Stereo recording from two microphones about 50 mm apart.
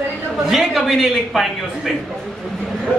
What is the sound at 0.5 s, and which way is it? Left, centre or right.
A man's voice, centre.